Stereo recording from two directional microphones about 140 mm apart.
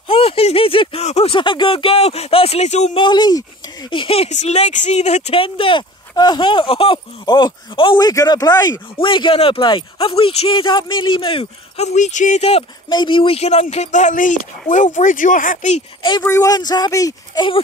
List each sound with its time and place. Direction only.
0.1 s speech: 45° left (ahead or behind)
3.0 s speech: 30° left (ahead or behind)
3.9 s speech: 40° left (ahead or behind)
12.9 s speech: 35° left (ahead or behind); by 15.8 s 65° left (ahead or behind)
16.0 s speech: 30° left (ahead or behind)